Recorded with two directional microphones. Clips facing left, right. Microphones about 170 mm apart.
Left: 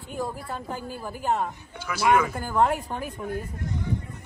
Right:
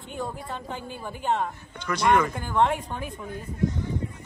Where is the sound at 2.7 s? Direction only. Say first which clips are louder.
Left 1 dB; 40° left (ahead or behind).